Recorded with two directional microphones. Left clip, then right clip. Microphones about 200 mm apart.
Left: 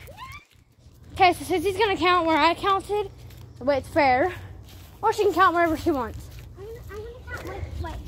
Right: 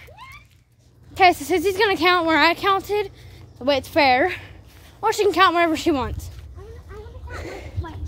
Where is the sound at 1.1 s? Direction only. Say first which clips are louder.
Right 4 dB; 25° right (ahead or behind).